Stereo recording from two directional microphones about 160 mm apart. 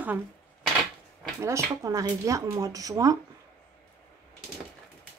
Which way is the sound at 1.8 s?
20° right (ahead or behind).